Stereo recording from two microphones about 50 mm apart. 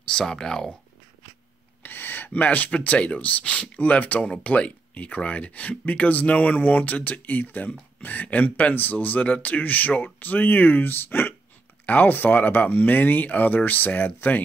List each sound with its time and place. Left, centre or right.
0.1 s speech: centre
1.8 s speech: left